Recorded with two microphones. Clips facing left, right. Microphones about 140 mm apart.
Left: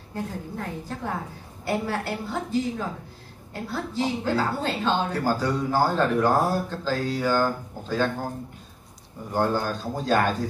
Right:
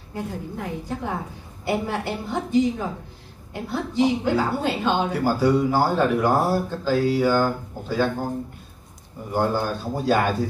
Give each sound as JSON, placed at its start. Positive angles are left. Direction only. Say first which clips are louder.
{"t": 0.1, "sound": "a woman's voice", "louder": "right 2 dB", "side_deg": -15}
{"t": 9.3, "sound": "speech", "louder": "right 1 dB", "side_deg": -10}